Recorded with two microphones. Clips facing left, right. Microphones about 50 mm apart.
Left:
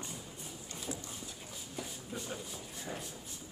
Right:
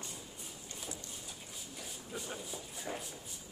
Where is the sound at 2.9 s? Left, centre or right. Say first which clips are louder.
Right 1 dB; right.